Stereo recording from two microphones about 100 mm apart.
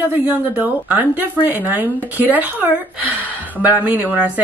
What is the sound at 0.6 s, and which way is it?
A woman's voice, 15° right (ahead or behind).